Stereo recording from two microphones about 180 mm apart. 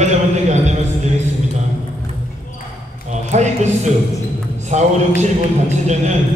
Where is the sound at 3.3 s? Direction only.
40° right (ahead or behind).